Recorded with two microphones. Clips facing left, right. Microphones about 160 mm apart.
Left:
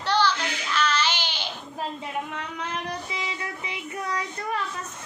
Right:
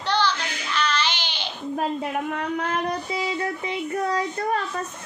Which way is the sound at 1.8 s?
55° right (ahead or behind).